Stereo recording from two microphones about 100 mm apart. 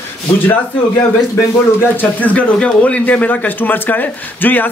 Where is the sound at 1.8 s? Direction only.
15° left (ahead or behind).